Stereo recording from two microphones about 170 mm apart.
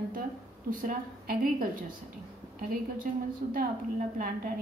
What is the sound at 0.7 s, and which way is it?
Speech, 55° right (ahead or behind).